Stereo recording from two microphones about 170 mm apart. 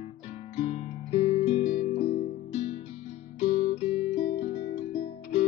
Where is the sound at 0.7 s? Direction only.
40° left (ahead or behind).